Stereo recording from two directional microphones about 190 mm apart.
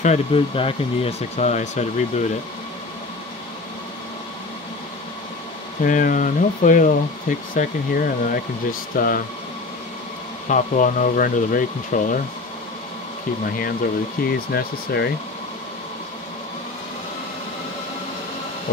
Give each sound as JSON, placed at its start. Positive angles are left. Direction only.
{"t": 0.0, "sound": "speech", "side_deg": 35}
{"t": 5.9, "sound": "speech", "side_deg": 45}
{"t": 10.5, "sound": "speech", "side_deg": 40}
{"t": 14.2, "sound": "speech", "side_deg": 50}